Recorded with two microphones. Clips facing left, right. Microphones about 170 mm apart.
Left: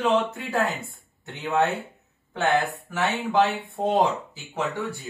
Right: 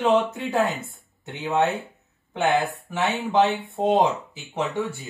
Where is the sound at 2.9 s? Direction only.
20° right (ahead or behind).